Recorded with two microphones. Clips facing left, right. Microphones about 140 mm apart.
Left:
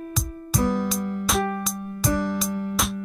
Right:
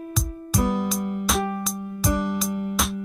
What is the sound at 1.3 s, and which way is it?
Music, 5° right (ahead or behind).